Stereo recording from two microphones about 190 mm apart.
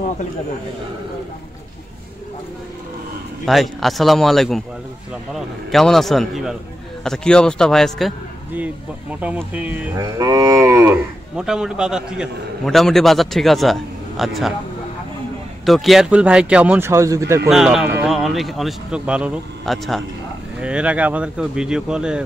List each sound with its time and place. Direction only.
3.4 s cattle: centre (ahead or behind)
9.1 s a man's voice: 10° right (ahead or behind)
9.5 s cattle: 10° right (ahead or behind)
15.6 s a man's voice: centre (ahead or behind); by 17.4 s 15° right (ahead or behind)
17.5 s cattle: centre (ahead or behind)